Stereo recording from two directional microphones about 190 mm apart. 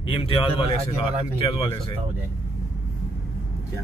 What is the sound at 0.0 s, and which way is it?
Speech, 30° left (ahead or behind).